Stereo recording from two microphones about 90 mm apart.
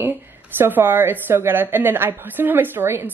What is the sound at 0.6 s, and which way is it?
A woman's voice, 20° right (ahead or behind).